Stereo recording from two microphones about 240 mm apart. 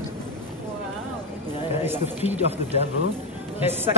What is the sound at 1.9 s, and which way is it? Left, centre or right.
Speech, centre.